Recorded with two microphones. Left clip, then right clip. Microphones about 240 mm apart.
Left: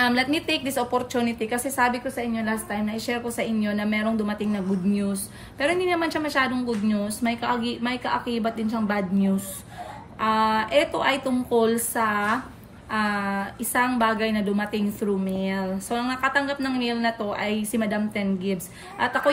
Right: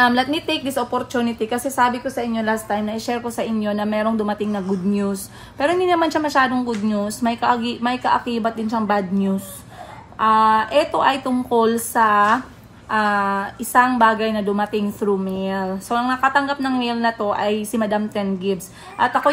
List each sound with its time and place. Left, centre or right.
0.0 s a woman's voice: centre